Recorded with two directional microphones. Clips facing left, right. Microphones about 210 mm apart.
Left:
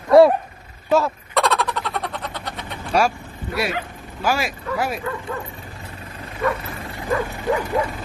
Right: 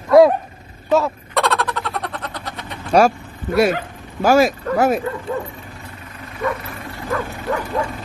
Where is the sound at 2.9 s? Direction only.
45° right (ahead or behind).